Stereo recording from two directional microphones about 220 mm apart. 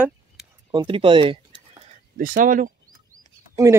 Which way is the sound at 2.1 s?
40° right (ahead or behind).